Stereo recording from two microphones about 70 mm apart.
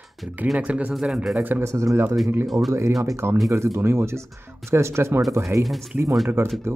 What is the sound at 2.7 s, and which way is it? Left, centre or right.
Speech, right.